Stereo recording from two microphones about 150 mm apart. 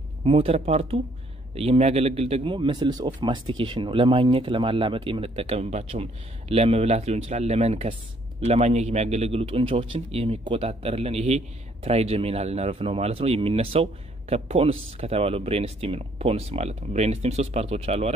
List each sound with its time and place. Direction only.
0.2 s a man's voice: 40° right (ahead or behind)